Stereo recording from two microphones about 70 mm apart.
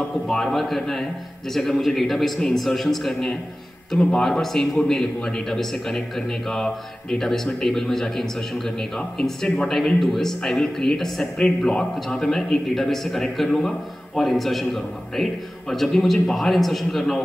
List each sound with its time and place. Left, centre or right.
0.1 s a man's voice: centre